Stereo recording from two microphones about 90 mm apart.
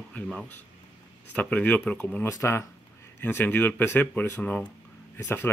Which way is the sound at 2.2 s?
30° left (ahead or behind).